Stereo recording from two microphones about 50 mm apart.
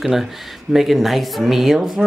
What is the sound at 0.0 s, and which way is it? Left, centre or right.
Speech, centre.